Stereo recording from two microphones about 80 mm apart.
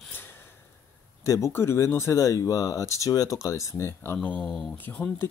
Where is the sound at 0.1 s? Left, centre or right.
Left.